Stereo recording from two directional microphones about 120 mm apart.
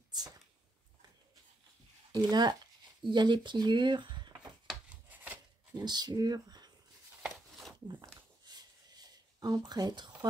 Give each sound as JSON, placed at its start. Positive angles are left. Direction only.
{"t": 2.1, "sound": "speech", "side_deg": -35}
{"t": 4.6, "sound": "rub", "side_deg": -10}
{"t": 5.8, "sound": "speech", "side_deg": -35}
{"t": 8.0, "sound": "a sound", "side_deg": -35}